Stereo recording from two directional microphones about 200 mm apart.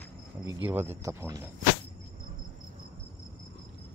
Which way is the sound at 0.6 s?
10° right (ahead or behind).